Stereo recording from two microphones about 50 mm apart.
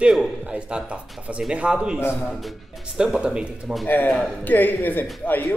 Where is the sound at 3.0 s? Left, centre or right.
Centre.